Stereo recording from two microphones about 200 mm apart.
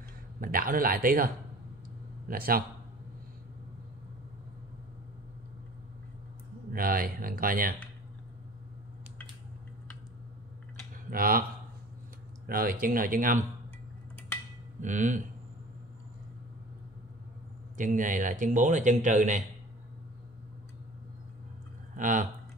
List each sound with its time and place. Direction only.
0.4 s speech: 45° right (ahead or behind)
6.7 s speech: 45° right (ahead or behind)
11.1 s speech: 45° right (ahead or behind)
12.4 s speech: 45° right (ahead or behind)
14.8 s a man's voice: 40° right (ahead or behind)
17.7 s a man's voice: 40° right (ahead or behind)
21.9 s speech: 40° right (ahead or behind)